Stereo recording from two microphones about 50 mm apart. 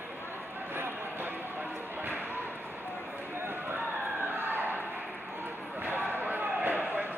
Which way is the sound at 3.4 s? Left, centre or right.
Right.